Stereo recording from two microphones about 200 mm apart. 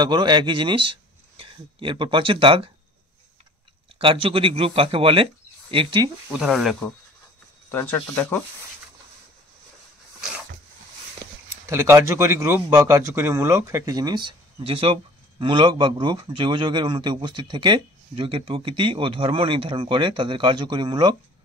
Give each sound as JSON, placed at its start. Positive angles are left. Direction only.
{"t": 0.0, "sound": "speech", "side_deg": -20}
{"t": 4.0, "sound": "a man's voice", "side_deg": -25}
{"t": 6.3, "sound": "speech", "side_deg": 0}
{"t": 7.7, "sound": "speech", "side_deg": 10}
{"t": 11.6, "sound": "a man's voice", "side_deg": -15}